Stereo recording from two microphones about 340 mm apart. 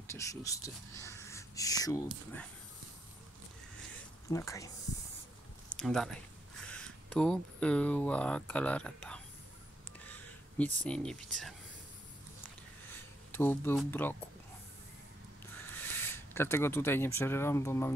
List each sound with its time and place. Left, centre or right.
0.1 s speech: centre
4.3 s speech: centre
5.8 s speech: centre
9.9 s a sound: centre
10.9 s speech: centre
12.9 s speech: centre
15.6 s speech: centre